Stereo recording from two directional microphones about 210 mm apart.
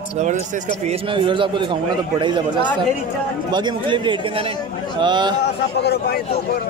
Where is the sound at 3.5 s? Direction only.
20° right (ahead or behind).